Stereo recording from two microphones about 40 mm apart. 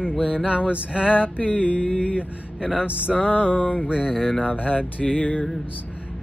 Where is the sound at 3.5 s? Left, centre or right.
Left.